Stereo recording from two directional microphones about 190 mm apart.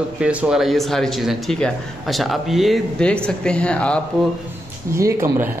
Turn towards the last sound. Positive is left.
turn(degrees=-15)  # may be behind; listen again after turning